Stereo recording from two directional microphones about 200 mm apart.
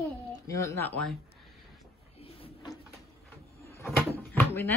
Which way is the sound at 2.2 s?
25° left (ahead or behind).